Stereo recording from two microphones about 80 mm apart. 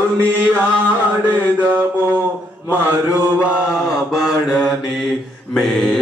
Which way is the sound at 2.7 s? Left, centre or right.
Right.